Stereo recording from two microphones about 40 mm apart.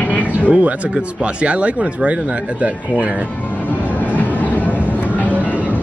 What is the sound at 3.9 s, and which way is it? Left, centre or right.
Train, left.